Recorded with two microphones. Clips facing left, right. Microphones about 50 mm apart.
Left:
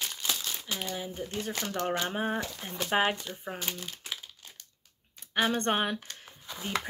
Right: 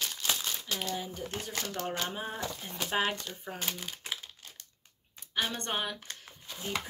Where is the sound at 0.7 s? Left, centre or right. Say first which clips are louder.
Even; centre.